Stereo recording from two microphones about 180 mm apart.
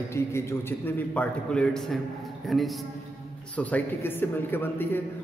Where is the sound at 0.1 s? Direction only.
15° left (ahead or behind).